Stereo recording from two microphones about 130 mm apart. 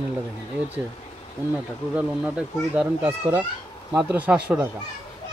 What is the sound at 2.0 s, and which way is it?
Speech, 10° right (ahead or behind).